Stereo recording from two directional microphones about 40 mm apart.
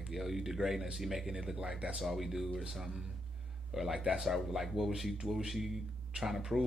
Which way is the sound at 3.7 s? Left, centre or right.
Centre.